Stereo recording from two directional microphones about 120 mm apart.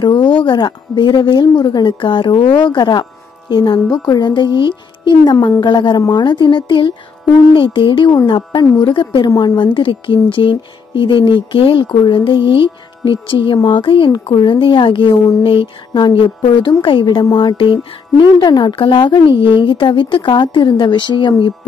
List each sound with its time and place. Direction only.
0.0 s music: 40° left (ahead or behind)
0.4 s a woman's voice: 40° left (ahead or behind)